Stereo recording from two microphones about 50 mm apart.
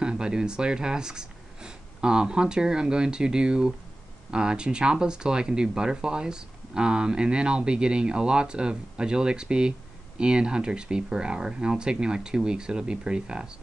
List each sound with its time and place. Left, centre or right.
0.0 s speech: centre